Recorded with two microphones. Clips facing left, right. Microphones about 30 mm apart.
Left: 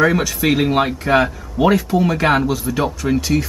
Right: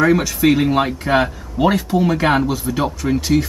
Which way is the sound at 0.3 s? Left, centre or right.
Centre.